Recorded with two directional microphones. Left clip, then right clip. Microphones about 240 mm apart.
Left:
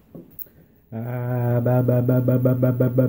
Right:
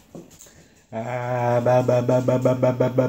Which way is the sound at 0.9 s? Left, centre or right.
Left.